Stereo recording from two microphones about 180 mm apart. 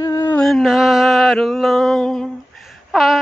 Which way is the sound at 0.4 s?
Centre (ahead or behind).